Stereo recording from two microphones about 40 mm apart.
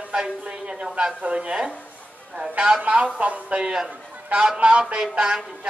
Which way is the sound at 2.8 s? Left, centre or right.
Right.